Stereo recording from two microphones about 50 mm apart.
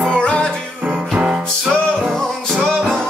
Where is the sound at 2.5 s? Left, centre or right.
Centre.